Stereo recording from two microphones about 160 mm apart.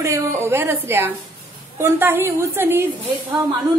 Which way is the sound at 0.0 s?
15° right (ahead or behind).